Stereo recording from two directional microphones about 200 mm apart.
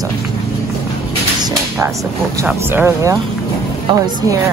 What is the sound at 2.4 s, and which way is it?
Speech, 10° right (ahead or behind).